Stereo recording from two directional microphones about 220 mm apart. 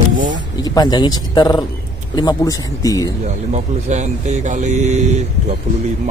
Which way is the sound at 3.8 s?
30° right (ahead or behind).